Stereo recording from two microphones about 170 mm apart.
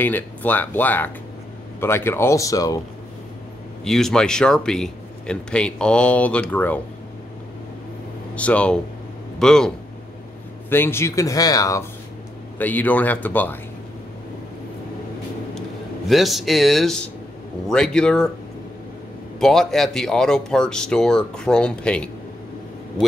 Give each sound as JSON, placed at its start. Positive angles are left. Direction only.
{"t": 0.0, "sound": "speech", "side_deg": 10}
{"t": 3.8, "sound": "speech", "side_deg": 0}
{"t": 8.4, "sound": "speech", "side_deg": 10}
{"t": 10.7, "sound": "speech", "side_deg": 15}
{"t": 12.5, "sound": "speech", "side_deg": 10}
{"t": 16.1, "sound": "speech", "side_deg": 0}
{"t": 19.4, "sound": "speech", "side_deg": 0}